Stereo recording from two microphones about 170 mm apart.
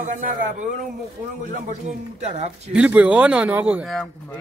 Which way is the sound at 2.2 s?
40° right (ahead or behind).